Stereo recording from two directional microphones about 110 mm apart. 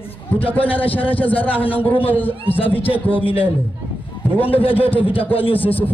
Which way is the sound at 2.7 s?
55° left (ahead or behind).